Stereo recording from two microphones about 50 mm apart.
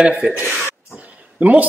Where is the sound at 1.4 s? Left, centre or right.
Right.